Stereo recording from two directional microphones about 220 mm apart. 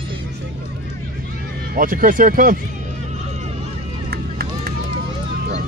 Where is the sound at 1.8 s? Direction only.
40° right (ahead or behind).